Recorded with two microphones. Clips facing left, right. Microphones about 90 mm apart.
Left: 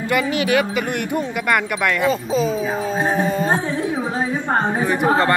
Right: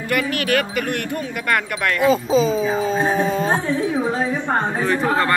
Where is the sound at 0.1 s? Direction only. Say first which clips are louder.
Left 2 dB; 20° left (ahead or behind).